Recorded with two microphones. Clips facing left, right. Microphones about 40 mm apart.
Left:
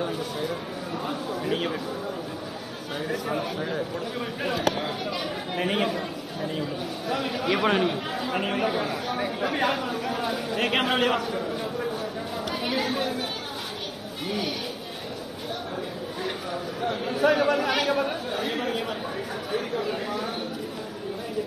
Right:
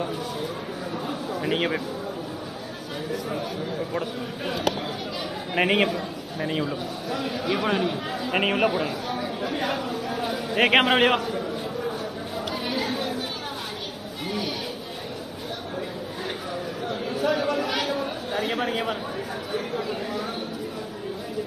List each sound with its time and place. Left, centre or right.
1.3 s a sound: right
3.1 s speech: left
5.6 s a man's voice: right
7.1 s speech: left
8.3 s a man's voice: right
9.0 s speech: left
10.5 s a man's voice: right
12.6 s chatter: left
16.9 s chatter: left
18.3 s a sound: right
19.5 s speech: left